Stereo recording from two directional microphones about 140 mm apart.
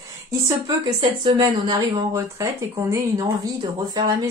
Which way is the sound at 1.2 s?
40° right (ahead or behind).